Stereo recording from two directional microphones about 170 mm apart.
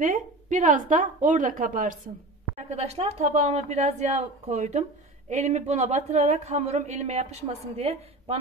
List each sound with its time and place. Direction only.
0.0 s a woman's voice: 50° right (ahead or behind)
2.5 s speech: 40° right (ahead or behind)